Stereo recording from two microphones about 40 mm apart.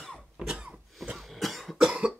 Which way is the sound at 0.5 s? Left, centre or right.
Centre.